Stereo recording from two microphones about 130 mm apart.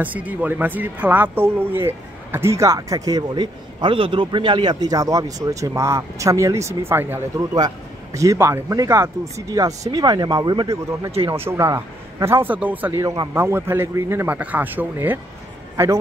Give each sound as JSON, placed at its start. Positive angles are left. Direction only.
{"t": 0.0, "sound": "speech", "side_deg": -10}
{"t": 7.5, "sound": "speech", "side_deg": -25}
{"t": 11.2, "sound": "a man's voice", "side_deg": -20}